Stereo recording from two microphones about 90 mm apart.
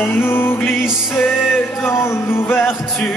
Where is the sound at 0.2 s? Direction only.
25° left (ahead or behind).